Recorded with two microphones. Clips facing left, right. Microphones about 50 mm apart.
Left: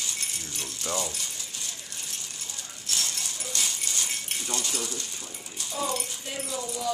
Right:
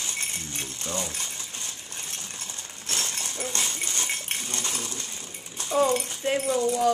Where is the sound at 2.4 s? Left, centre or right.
Right.